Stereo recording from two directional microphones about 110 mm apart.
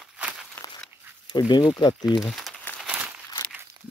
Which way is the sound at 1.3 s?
40° left (ahead or behind).